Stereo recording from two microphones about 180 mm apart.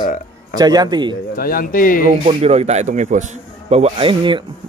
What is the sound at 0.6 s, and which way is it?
Music, 20° right (ahead or behind).